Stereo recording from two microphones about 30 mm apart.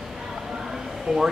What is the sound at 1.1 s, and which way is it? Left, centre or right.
Speech, right.